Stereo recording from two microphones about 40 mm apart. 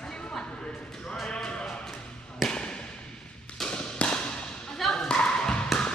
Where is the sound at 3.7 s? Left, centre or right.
Left.